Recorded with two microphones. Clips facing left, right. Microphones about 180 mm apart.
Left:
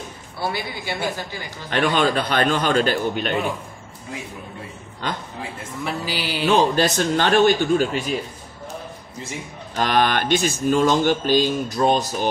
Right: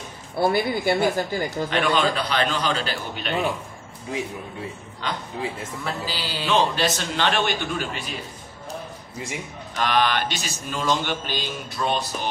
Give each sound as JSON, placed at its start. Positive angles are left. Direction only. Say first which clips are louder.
{"t": 0.4, "sound": "speech", "louder": "right 6 dB", "side_deg": -45}
{"t": 1.7, "sound": "speech", "louder": "left 4 dB", "side_deg": 45}
{"t": 5.9, "sound": "music", "louder": "left 4 dB", "side_deg": 15}
{"t": 6.4, "sound": "speech", "louder": "left 4 dB", "side_deg": 45}
{"t": 9.8, "sound": "speech", "louder": "left 2 dB", "side_deg": 45}